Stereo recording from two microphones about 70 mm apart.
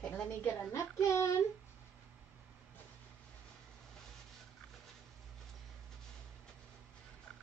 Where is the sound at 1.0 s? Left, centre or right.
Left.